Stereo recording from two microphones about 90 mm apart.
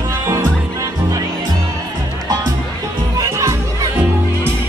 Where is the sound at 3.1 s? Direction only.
35° right (ahead or behind).